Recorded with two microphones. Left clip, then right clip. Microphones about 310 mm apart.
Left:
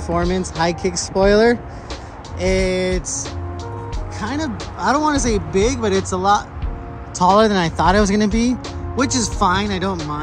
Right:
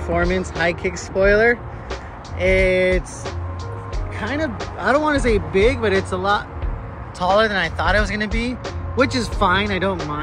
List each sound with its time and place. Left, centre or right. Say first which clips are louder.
0.0 s speech: even; centre
4.2 s speech: right 1 dB; centre